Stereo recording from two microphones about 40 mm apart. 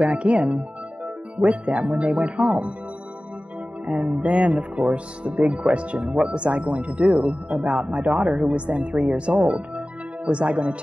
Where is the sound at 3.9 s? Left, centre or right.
Right.